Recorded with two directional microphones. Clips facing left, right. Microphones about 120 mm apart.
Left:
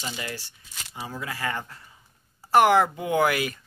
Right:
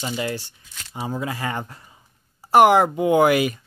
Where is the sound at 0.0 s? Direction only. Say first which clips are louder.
Right 8 dB; 25° right (ahead or behind).